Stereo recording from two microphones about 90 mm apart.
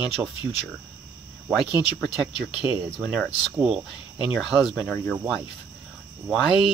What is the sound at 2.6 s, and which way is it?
Speech, 35° right (ahead or behind).